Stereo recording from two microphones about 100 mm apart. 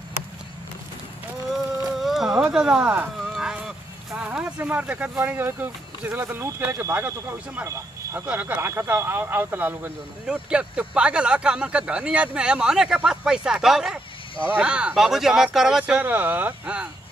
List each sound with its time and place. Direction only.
1.9 s a sound: 5° right (ahead or behind)
6.2 s speech: 30° right (ahead or behind)
8.3 s speech: 15° right (ahead or behind)
16.0 s speech: 20° right (ahead or behind)